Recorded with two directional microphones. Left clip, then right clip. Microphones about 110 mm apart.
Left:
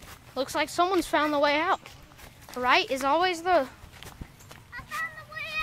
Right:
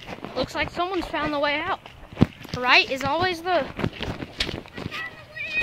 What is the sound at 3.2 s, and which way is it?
Speech, centre (ahead or behind).